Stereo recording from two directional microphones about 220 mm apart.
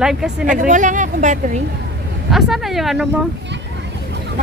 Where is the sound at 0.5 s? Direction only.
35° right (ahead or behind).